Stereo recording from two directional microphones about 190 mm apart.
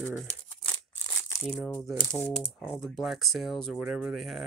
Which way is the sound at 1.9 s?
5° left (ahead or behind).